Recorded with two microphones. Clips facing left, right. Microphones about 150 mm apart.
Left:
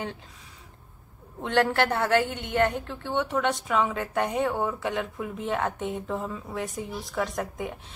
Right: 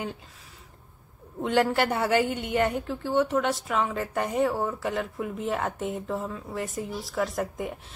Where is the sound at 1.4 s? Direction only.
10° right (ahead or behind).